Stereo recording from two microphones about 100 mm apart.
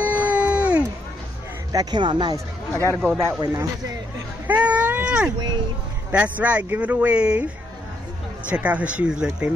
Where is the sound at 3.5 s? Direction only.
30° right (ahead or behind).